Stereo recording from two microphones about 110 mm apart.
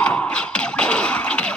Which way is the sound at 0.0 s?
10° left (ahead or behind).